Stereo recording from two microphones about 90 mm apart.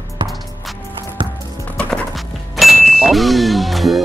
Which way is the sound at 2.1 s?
Centre (ahead or behind).